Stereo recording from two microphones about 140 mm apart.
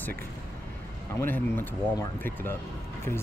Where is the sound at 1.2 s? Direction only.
15° left (ahead or behind).